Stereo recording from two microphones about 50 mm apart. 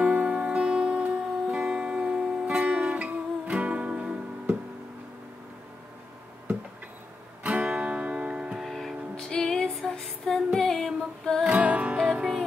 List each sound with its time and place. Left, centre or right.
0.0 s music: right
7.4 s music: right
8.5 s music: centre
9.1 s music: centre
11.4 s music: right